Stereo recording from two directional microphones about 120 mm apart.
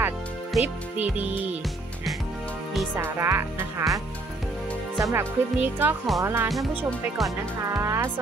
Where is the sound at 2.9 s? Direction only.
20° right (ahead or behind).